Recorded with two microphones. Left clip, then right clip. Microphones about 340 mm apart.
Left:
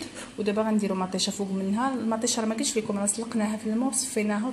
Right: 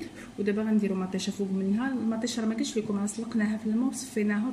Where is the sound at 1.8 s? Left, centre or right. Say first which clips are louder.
Left 8 dB; centre.